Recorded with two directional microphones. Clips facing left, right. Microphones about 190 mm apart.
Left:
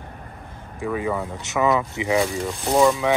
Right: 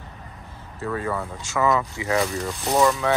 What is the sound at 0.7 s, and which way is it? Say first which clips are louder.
Speech: left 2 dB; 15° left (ahead or behind).